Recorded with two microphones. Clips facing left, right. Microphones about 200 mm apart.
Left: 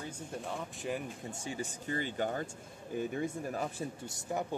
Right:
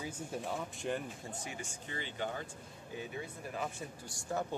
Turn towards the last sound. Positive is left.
turn(degrees=20)  # may be behind; listen again after turning